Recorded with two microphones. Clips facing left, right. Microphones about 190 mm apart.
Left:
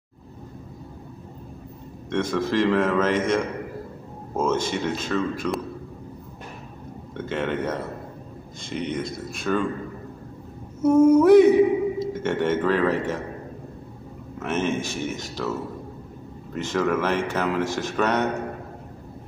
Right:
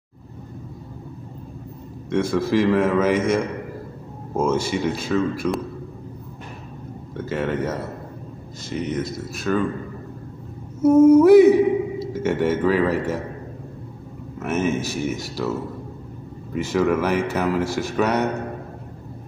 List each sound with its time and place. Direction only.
2.0 s speech: 10° right (ahead or behind)
7.2 s speech: 5° right (ahead or behind)
10.8 s speech: 10° right (ahead or behind)
14.4 s speech: 5° right (ahead or behind)
16.5 s speech: 5° right (ahead or behind)